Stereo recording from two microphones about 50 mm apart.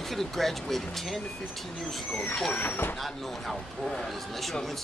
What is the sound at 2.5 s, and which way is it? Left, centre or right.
Speech, left.